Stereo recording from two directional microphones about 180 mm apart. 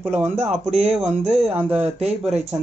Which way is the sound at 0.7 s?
35° right (ahead or behind).